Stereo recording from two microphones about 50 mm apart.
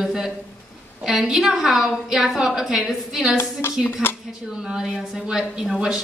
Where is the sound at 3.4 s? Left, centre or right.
Left.